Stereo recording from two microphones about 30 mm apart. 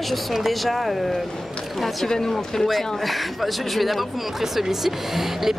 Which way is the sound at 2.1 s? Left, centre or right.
Centre.